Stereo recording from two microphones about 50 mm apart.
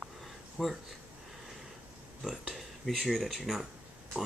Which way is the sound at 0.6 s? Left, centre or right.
Centre.